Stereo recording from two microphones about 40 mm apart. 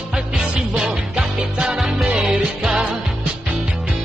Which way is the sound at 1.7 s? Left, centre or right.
Centre.